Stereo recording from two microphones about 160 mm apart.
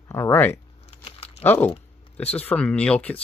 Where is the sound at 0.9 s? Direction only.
40° left (ahead or behind).